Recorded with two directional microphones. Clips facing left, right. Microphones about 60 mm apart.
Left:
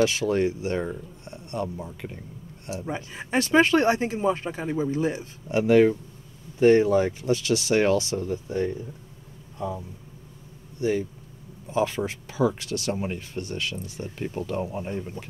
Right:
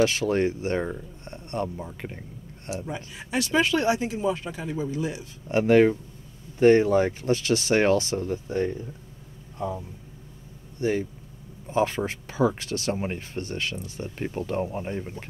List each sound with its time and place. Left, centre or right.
0.0 s speech: right
2.7 s speech: left
5.5 s speech: right
10.8 s speech: right